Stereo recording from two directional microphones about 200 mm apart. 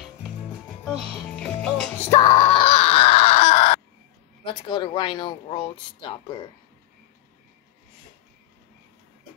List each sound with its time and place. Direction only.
0.8 s music: centre (ahead or behind)
2.0 s wail: 35° left (ahead or behind)
4.5 s speech: 25° left (ahead or behind)